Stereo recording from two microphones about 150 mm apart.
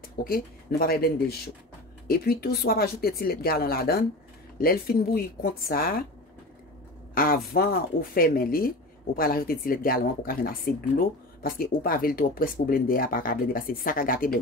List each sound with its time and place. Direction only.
0.2 s speech: 85° left
4.6 s speech: 80° left
7.2 s speech: 80° left